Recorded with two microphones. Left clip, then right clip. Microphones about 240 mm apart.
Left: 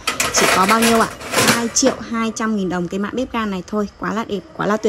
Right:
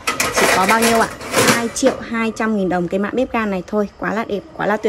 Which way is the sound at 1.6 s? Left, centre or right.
Centre.